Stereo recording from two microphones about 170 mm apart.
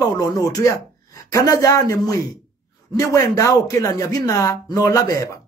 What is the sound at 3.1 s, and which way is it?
Speech, 20° left (ahead or behind).